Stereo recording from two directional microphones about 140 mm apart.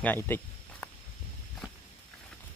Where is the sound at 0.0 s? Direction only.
15° left (ahead or behind).